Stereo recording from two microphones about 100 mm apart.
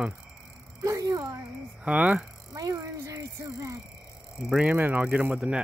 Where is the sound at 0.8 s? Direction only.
35° right (ahead or behind).